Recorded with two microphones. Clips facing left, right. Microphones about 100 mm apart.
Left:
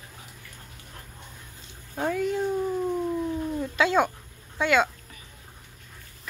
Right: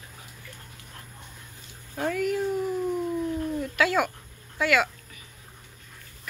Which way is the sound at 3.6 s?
25° left (ahead or behind).